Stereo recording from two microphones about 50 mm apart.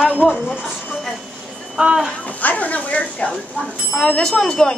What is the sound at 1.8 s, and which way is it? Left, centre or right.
Speech, centre.